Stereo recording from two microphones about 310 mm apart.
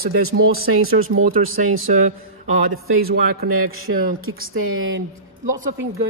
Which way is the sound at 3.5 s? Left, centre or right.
Right.